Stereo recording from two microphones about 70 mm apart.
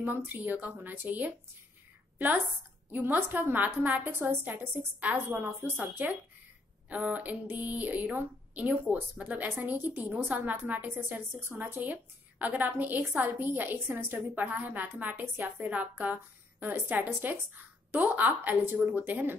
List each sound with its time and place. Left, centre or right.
0.0 s a woman's voice: right
4.1 s a woman's voice: right